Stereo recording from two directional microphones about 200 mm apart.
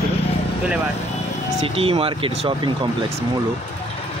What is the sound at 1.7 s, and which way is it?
Speech, 30° right (ahead or behind).